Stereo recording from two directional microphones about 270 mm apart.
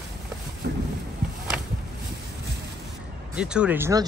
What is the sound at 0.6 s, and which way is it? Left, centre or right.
Boat, right.